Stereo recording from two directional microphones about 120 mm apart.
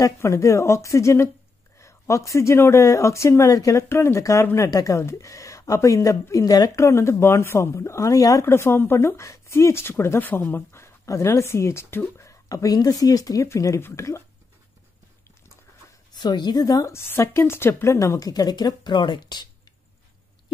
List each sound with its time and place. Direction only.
0.0 s speech: 25° left (ahead or behind)
16.1 s a woman's voice: 40° left (ahead or behind)